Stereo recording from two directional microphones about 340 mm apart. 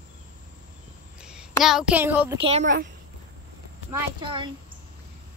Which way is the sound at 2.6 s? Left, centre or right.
Right.